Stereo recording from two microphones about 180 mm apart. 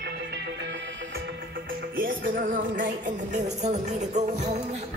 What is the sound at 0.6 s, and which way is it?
Music, 80° right.